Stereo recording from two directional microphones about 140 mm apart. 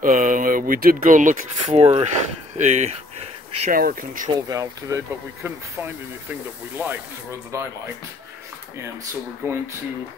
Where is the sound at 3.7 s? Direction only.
90° right.